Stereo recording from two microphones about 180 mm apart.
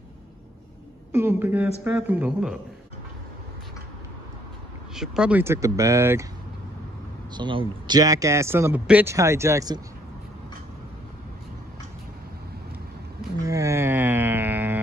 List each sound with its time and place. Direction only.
1.1 s speech: 10° right (ahead or behind)
4.9 s speech: 5° right (ahead or behind)
7.3 s speech: 25° right (ahead or behind)
13.4 s mantra: 20° right (ahead or behind)